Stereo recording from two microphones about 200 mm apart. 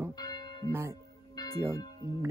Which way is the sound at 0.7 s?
10° right (ahead or behind).